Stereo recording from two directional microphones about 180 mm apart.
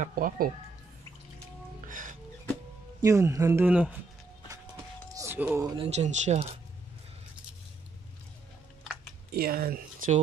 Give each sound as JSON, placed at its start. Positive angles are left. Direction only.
{"t": 0.0, "sound": "speech", "side_deg": -50}
{"t": 1.9, "sound": "music", "side_deg": -45}
{"t": 3.0, "sound": "speech", "side_deg": -15}
{"t": 5.1, "sound": "a sound", "side_deg": -15}
{"t": 5.8, "sound": "speech", "side_deg": -40}
{"t": 9.3, "sound": "speech", "side_deg": -55}